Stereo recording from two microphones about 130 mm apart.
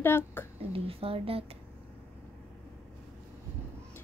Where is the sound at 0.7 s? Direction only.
45° right (ahead or behind).